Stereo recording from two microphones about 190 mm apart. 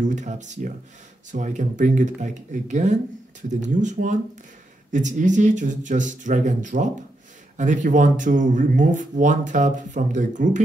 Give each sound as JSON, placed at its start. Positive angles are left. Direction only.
{"t": 0.0, "sound": "speech", "side_deg": -40}